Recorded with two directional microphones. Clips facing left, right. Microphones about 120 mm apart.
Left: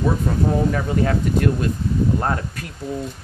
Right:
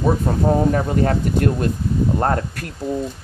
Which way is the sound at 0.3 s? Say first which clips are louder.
Right 3 dB; 45° right (ahead or behind).